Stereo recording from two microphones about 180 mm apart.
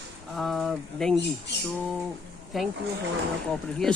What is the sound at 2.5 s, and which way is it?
Speech, centre (ahead or behind).